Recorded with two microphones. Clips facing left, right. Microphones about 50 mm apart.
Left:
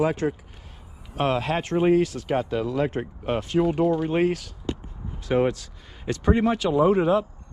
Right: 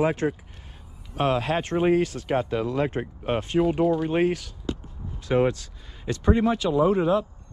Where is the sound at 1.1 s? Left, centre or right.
Left.